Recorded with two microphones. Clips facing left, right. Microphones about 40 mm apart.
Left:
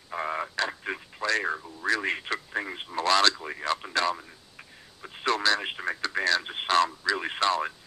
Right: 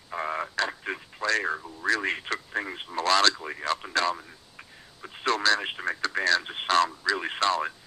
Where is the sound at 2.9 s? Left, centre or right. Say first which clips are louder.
Even; left.